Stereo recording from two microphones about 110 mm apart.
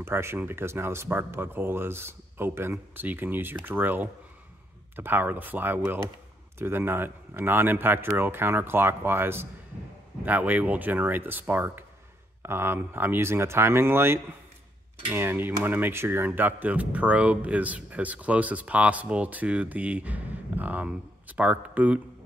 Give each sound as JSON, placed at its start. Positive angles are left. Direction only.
{"t": 0.0, "sound": "speech", "side_deg": -20}